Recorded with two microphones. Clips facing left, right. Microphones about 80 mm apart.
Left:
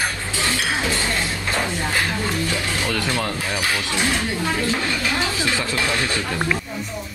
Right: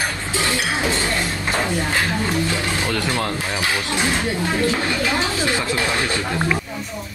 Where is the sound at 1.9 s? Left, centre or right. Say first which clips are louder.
Right 2 dB; right.